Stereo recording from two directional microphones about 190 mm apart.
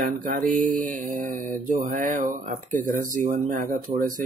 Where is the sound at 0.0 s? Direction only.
45° right (ahead or behind).